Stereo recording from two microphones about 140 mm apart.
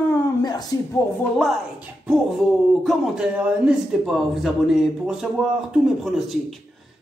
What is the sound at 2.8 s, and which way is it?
Speech, 5° right (ahead or behind).